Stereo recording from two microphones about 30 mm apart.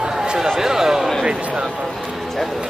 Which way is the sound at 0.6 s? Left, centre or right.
Centre.